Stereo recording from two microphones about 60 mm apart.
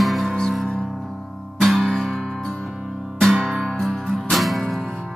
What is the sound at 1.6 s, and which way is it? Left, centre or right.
Music, centre.